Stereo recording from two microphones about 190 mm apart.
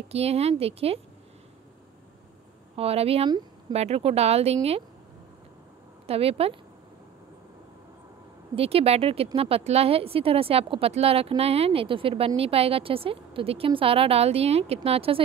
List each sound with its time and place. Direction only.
0.1 s speech: 35° right (ahead or behind)
2.7 s speech: 30° right (ahead or behind)
6.0 s speech: 30° right (ahead or behind)
8.5 s speech: 30° right (ahead or behind)